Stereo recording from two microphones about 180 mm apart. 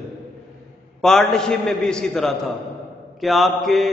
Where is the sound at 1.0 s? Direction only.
Centre (ahead or behind).